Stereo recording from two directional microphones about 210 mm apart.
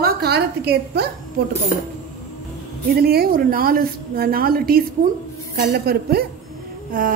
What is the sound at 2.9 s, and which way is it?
A woman's voice, 45° right (ahead or behind).